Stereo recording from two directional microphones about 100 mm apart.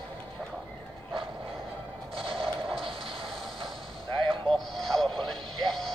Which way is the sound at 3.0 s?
65° right (ahead or behind).